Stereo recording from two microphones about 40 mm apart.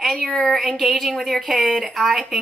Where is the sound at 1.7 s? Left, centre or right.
Centre.